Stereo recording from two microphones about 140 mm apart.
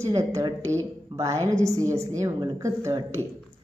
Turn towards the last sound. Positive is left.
turn(degrees=-20)  # may be behind; listen again after turning